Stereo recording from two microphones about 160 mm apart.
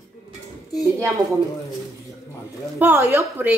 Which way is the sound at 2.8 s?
10° right (ahead or behind).